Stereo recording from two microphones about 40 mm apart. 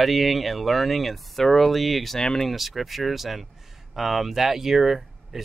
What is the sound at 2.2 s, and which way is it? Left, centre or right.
Speech, centre.